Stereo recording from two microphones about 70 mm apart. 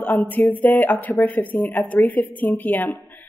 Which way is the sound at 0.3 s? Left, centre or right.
Left.